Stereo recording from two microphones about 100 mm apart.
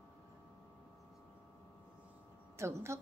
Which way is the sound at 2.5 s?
30° right (ahead or behind).